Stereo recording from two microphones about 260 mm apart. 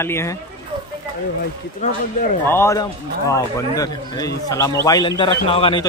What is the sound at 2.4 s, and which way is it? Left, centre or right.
A man's voice, centre.